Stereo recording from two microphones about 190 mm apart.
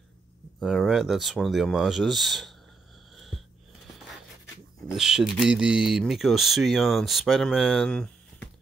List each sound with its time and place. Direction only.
0.6 s speech: centre (ahead or behind)
4.9 s speech: 5° right (ahead or behind)